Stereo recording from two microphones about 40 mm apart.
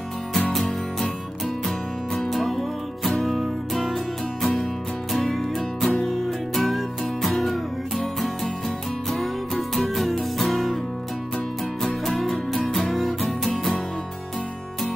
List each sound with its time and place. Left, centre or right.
0.5 s music: centre
2.1 s music: centre
9.1 s music: centre
11.8 s music: centre